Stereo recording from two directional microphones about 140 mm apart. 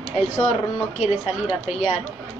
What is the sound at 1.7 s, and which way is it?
Speech, 50° left (ahead or behind).